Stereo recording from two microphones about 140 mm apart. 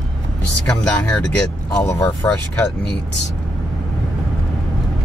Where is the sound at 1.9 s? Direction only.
20° left (ahead or behind).